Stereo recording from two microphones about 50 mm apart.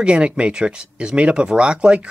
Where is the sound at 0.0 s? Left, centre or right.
Right.